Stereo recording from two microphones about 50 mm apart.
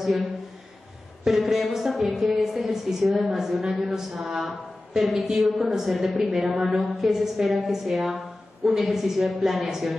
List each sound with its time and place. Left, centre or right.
0.0 s a woman's voice: centre